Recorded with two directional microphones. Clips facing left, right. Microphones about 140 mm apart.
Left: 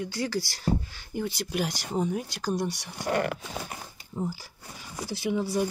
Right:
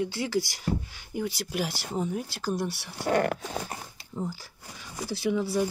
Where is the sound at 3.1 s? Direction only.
45° right (ahead or behind).